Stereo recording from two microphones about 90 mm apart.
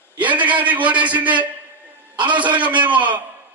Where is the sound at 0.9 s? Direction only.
15° right (ahead or behind).